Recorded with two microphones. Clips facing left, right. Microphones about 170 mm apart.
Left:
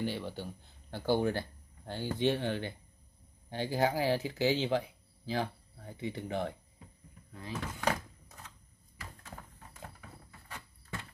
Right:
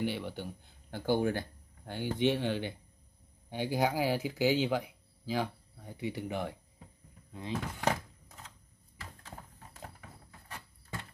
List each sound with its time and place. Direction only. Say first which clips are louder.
0.0 s speech: right 1 dB; 15° right (ahead or behind)
7.3 s speech: right 3 dB; 20° right (ahead or behind)